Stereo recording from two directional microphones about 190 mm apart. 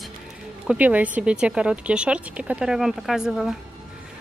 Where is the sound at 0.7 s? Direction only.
10° right (ahead or behind).